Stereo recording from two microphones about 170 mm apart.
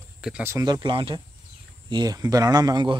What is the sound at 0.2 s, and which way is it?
Speech, 10° right (ahead or behind).